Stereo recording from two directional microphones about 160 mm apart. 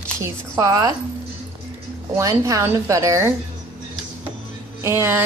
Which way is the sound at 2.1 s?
20° right (ahead or behind).